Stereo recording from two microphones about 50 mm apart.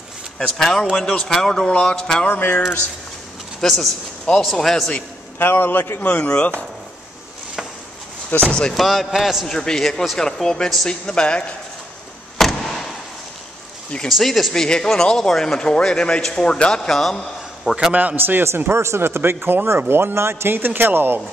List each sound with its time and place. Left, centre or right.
0.6 s speech: centre
2.2 s music: left
3.6 s speech: centre
5.4 s a man's voice: left
5.9 s speech: left
8.4 s speech: centre
8.7 s speech: centre
9.5 s speech: centre
12.4 s vehicle: centre
14.0 s speech: centre
14.5 s speech: centre
17.9 s a man's voice: right
18.2 s speech: right
18.7 s speech: right